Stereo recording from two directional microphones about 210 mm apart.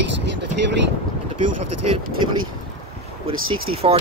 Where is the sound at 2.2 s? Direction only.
20° right (ahead or behind).